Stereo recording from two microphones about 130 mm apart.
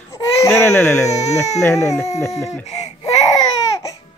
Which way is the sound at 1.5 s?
20° left (ahead or behind).